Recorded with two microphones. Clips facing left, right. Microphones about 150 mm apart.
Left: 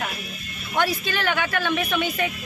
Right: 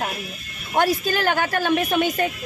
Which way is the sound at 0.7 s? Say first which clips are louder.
Right 4 dB; 40° right (ahead or behind).